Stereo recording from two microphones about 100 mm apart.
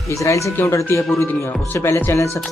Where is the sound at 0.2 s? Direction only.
30° left (ahead or behind).